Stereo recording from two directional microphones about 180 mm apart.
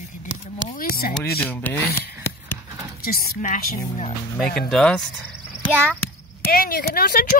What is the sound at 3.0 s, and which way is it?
Speech, 55° left (ahead or behind).